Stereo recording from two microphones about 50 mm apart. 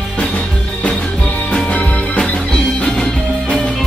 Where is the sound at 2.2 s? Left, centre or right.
Centre.